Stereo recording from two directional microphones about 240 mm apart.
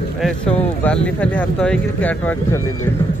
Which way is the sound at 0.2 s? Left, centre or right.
Centre.